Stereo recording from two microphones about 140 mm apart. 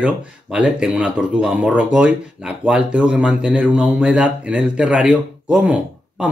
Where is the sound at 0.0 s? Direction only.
10° right (ahead or behind).